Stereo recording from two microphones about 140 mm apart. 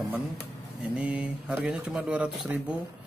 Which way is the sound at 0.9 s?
10° right (ahead or behind).